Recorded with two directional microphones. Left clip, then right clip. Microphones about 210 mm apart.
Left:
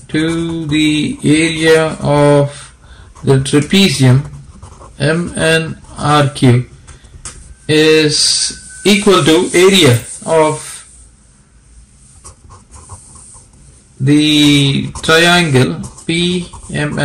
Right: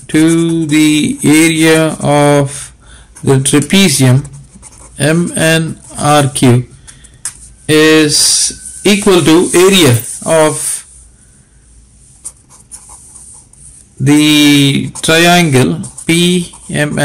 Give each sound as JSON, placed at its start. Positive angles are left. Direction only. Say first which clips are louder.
{"t": 0.0, "sound": "speech", "louder": "right 6 dB", "side_deg": -30}
{"t": 7.6, "sound": "speech", "louder": "right 2 dB", "side_deg": -30}
{"t": 14.0, "sound": "speech", "louder": "right 2 dB", "side_deg": -30}